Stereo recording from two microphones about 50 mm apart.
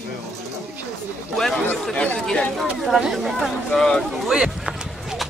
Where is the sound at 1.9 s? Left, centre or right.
Left.